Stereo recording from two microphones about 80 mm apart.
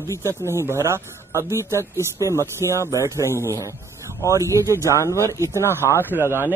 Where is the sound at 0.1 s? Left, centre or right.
Right.